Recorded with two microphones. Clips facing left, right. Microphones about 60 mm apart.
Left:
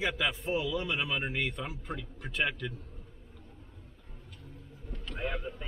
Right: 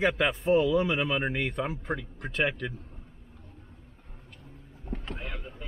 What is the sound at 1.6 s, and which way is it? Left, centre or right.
Speech, right.